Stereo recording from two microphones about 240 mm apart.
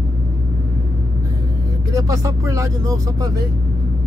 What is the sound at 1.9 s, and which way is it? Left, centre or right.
Speech, centre.